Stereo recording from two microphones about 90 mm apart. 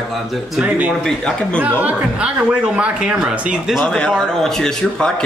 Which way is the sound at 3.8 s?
10° left (ahead or behind).